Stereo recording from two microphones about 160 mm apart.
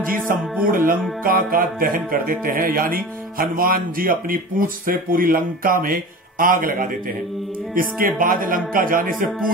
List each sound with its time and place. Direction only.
0.7 s speech: 60° right (ahead or behind)